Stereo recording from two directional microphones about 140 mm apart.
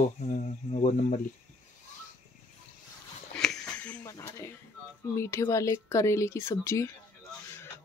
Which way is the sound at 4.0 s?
20° left (ahead or behind).